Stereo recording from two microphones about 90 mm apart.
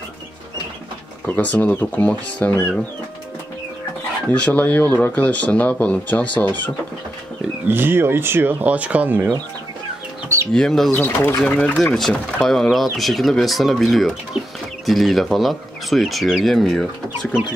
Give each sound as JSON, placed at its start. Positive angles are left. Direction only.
{"t": 1.2, "sound": "speech", "side_deg": 15}
{"t": 4.3, "sound": "speech", "side_deg": 15}
{"t": 7.6, "sound": "speech", "side_deg": -25}
{"t": 10.5, "sound": "speech", "side_deg": 5}
{"t": 10.9, "sound": "speech", "side_deg": 15}
{"t": 14.3, "sound": "speech", "side_deg": 90}
{"t": 14.9, "sound": "speech", "side_deg": 0}